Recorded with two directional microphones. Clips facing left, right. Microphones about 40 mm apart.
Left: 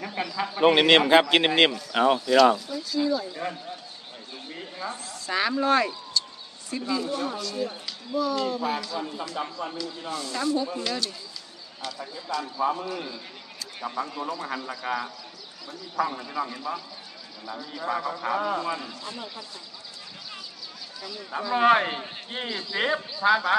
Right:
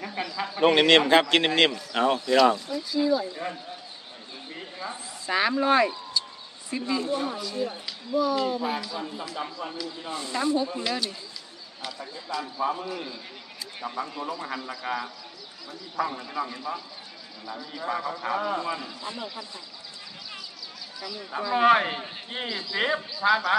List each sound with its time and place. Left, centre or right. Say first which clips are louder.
0.0 s speech: left 2 dB; centre
2.7 s speech: right 1 dB; centre
4.6 s a sound: left 2 dB; centre
4.9 s speech: right 2 dB; centre
10.0 s speech: right 1 dB; centre
21.0 s speech: even; centre